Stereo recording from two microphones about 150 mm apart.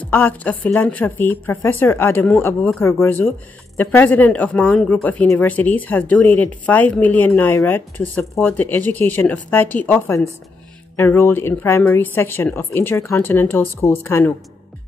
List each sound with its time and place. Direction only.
0.0 s speech: 10° left (ahead or behind)